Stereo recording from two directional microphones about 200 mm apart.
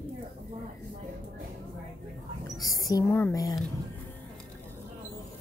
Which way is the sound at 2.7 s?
15° left (ahead or behind).